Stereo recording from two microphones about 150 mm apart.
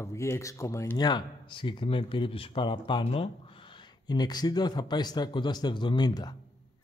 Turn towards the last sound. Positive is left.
turn(degrees=30)  # may be behind; listen again after turning